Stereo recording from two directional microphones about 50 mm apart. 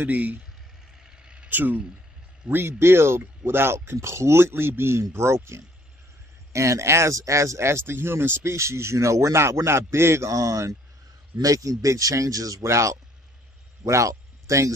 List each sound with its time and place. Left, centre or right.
0.0 s speech: right
1.0 s vehicle: centre
1.5 s a man's voice: right
3.9 s a man's voice: right
6.5 s speech: right
13.8 s a sound: right